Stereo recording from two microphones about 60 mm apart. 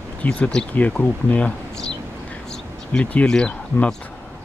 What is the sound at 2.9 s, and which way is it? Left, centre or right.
Speech, centre.